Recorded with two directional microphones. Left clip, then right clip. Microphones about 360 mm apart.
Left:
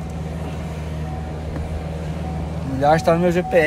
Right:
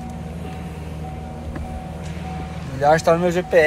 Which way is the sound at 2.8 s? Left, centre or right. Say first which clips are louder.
Even; centre.